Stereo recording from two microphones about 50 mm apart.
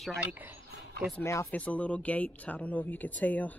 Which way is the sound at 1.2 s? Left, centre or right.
Left.